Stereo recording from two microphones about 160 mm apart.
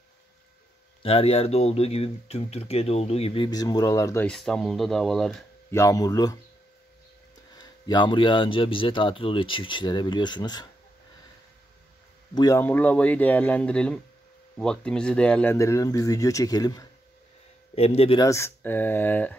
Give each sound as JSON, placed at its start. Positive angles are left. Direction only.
{"t": 1.0, "sound": "speech", "side_deg": 35}
{"t": 3.4, "sound": "speech", "side_deg": 25}
{"t": 4.3, "sound": "speech", "side_deg": 5}
{"t": 5.7, "sound": "speech", "side_deg": 20}
{"t": 7.5, "sound": "speech", "side_deg": 25}
{"t": 12.4, "sound": "speech", "side_deg": 20}
{"t": 12.6, "sound": "speech", "side_deg": 10}
{"t": 15.5, "sound": "speech", "side_deg": 20}
{"t": 17.7, "sound": "speech", "side_deg": 40}
{"t": 18.2, "sound": "speech", "side_deg": 15}